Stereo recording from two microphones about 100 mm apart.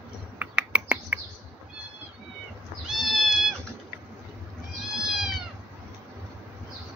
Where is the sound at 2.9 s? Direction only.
5° right (ahead or behind).